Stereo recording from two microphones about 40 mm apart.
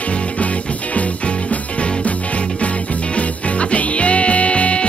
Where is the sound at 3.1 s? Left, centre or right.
Left.